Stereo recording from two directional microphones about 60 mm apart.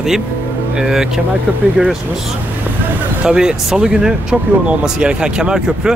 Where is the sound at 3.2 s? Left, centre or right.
Centre.